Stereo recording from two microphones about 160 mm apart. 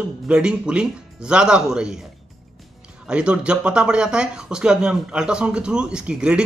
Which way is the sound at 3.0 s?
5° right (ahead or behind).